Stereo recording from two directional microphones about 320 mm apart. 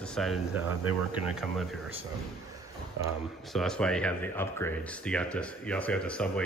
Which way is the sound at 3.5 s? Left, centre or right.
Centre.